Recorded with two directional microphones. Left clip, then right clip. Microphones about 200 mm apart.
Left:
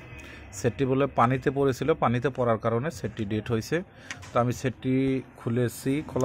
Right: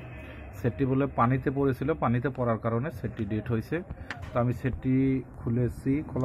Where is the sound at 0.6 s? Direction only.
35° left (ahead or behind).